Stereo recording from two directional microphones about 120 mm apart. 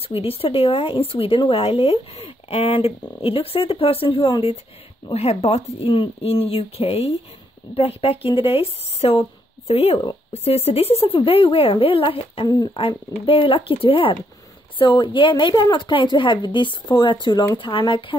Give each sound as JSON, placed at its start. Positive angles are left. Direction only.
{"t": 0.0, "sound": "a woman's voice", "side_deg": 55}